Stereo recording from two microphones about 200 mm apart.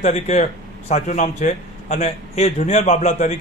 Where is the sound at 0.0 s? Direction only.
35° left (ahead or behind).